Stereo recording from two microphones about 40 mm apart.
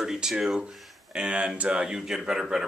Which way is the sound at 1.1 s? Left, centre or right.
Right.